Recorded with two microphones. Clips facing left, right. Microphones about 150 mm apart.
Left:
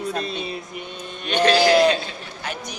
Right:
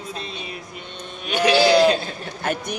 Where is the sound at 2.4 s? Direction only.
50° right (ahead or behind).